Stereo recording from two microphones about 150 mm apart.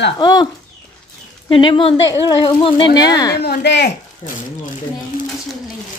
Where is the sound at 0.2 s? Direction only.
30° left (ahead or behind).